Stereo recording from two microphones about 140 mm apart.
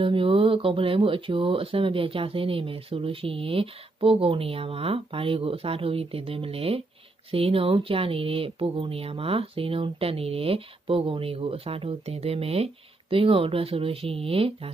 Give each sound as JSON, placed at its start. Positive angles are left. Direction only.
{"t": 0.0, "sound": "speech", "side_deg": -40}